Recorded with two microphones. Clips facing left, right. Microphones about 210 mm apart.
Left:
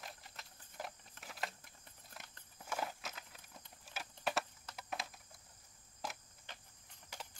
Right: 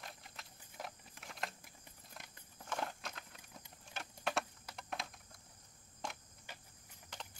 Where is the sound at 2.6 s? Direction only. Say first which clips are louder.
Even; 5° left (ahead or behind).